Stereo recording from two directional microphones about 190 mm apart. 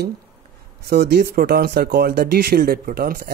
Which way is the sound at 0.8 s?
60° right (ahead or behind).